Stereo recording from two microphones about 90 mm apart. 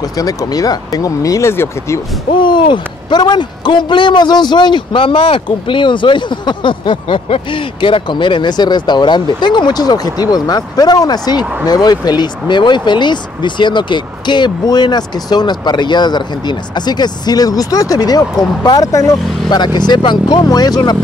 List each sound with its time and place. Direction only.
0.2 s speech: 45° left (ahead or behind)
1.5 s speech: 25° left (ahead or behind)
2.3 s a man's voice: 60° left (ahead or behind); by 19.6 s 40° left (ahead or behind)
19.6 s a man's voice: 55° left (ahead or behind)